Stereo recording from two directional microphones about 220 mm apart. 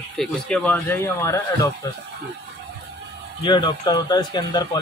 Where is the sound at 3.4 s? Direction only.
20° left (ahead or behind).